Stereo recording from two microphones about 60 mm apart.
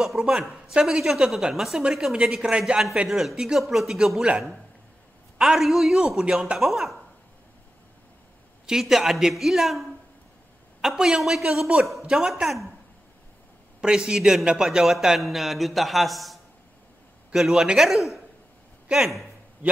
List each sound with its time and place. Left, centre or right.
0.2 s speech: centre
5.4 s speech: centre
5.9 s speech: centre
6.6 s speech: centre
8.6 s speech: centre
13.7 s a man's voice: centre